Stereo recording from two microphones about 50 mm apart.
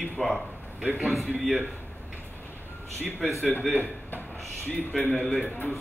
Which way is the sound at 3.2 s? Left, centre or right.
Centre.